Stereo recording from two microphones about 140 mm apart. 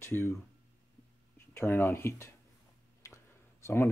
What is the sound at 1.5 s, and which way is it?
Speech, 20° left (ahead or behind).